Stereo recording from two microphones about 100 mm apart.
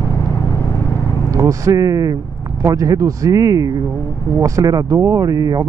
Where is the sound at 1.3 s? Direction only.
30° right (ahead or behind).